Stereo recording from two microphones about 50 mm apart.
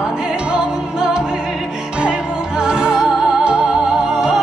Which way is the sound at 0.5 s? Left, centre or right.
Centre.